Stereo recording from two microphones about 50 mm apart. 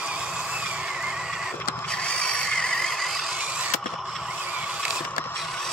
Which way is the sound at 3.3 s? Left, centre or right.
Right.